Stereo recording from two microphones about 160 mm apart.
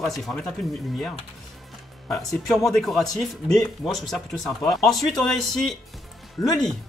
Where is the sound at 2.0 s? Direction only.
5° left (ahead or behind).